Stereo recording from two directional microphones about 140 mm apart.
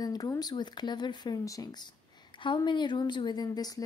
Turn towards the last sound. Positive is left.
turn(degrees=30)  # may be behind; listen again after turning